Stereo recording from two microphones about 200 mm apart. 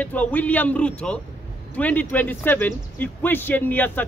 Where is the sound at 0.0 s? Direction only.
10° left (ahead or behind).